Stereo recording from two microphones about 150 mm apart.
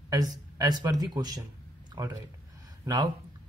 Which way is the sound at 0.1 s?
25° right (ahead or behind).